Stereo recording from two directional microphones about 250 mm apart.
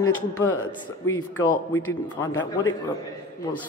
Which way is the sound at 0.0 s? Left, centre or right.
Left.